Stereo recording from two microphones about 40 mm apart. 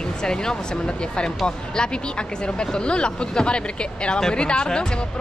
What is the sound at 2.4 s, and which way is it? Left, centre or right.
Speech, left.